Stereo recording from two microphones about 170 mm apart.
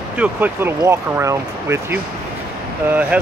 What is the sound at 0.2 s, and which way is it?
Speech, 10° right (ahead or behind).